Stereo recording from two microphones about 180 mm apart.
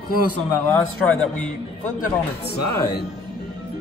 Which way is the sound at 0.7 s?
5° left (ahead or behind).